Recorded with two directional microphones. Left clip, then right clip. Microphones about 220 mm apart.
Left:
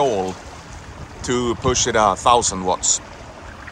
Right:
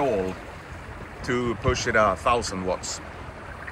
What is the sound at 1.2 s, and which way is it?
Speech, 15° left (ahead or behind).